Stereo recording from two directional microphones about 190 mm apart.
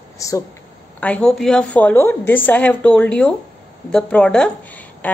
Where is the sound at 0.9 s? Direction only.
5° left (ahead or behind).